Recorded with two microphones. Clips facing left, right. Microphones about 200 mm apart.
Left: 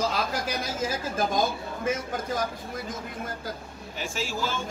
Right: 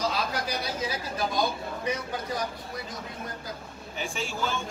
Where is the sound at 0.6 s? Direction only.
45° left (ahead or behind).